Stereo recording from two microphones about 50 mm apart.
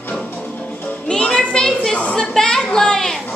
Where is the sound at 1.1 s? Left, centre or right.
Centre.